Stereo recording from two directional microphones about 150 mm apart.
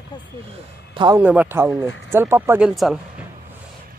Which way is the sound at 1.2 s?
10° right (ahead or behind).